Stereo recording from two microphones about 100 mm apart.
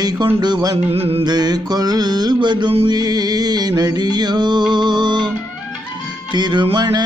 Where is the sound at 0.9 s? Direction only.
75° right (ahead or behind).